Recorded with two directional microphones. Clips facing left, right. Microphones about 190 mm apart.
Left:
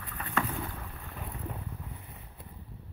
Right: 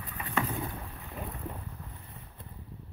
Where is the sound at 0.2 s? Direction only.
15° right (ahead or behind).